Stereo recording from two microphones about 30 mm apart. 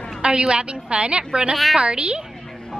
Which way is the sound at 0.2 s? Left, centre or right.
Right.